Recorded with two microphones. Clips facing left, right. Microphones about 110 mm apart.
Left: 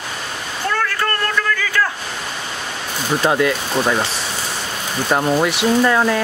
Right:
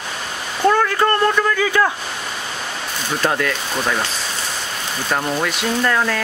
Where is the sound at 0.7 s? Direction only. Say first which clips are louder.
Right 6 dB; 20° right (ahead or behind).